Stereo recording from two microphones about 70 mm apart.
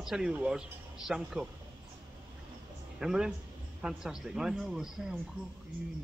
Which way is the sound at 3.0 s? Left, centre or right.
Centre.